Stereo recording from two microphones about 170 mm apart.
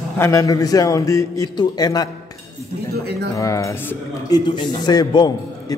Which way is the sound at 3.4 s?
20° left (ahead or behind).